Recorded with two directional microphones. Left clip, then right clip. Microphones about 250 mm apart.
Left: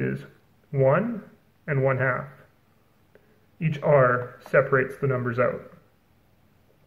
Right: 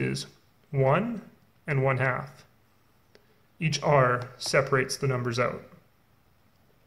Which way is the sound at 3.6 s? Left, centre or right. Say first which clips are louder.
Left 3 dB; right.